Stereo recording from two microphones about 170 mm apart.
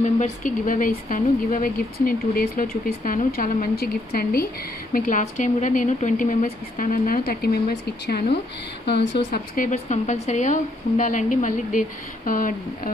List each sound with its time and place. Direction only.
0.0 s speech: 50° left (ahead or behind); by 4.5 s 65° left (ahead or behind)
4.9 s speech: 50° left (ahead or behind); by 7.6 s 65° left (ahead or behind)
8.8 s speech: 90° left
9.6 s speech: 45° left (ahead or behind)